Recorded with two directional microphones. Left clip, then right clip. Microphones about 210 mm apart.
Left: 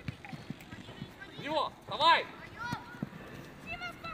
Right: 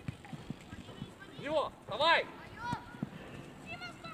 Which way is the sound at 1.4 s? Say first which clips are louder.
Left 1 dB; 45° left (ahead or behind).